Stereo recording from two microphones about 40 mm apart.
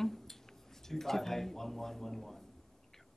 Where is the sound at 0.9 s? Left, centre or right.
Centre.